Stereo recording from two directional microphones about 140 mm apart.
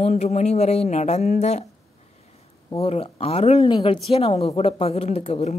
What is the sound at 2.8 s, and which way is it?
Speech, 45° left (ahead or behind).